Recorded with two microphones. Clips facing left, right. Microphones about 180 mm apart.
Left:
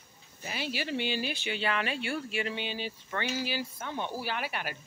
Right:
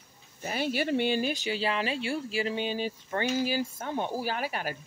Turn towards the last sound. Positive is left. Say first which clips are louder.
# right 3 dB
turn(degrees=-40)  # may be behind; listen again after turning